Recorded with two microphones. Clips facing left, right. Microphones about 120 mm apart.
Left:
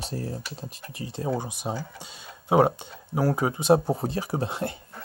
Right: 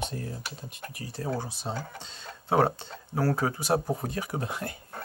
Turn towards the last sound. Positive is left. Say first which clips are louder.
# left 5 dB
turn(degrees=25)  # may be behind; listen again after turning